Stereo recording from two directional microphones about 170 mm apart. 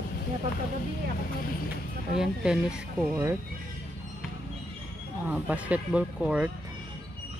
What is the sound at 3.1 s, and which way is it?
Speech, 15° right (ahead or behind).